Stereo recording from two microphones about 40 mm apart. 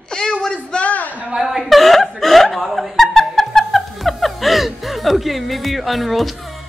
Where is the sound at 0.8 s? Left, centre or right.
Left.